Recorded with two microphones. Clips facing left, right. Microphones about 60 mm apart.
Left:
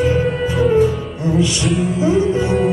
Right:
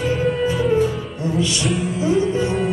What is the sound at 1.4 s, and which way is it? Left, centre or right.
Music, left.